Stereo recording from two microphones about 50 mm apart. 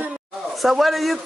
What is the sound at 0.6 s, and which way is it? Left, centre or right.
Speech, centre.